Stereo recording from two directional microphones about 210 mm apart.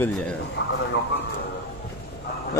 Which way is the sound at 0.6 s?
60° left (ahead or behind).